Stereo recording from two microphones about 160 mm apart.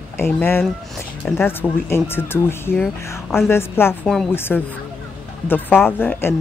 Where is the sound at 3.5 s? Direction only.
15° left (ahead or behind).